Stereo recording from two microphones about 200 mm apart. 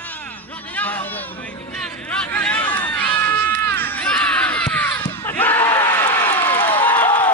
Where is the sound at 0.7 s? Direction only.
10° left (ahead or behind).